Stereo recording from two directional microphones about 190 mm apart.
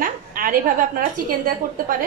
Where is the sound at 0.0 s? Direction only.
45° right (ahead or behind).